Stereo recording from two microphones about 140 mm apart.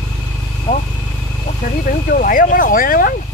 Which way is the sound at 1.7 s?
75° left (ahead or behind).